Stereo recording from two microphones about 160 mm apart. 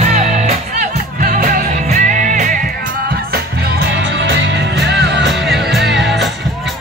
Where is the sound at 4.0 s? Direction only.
90° right.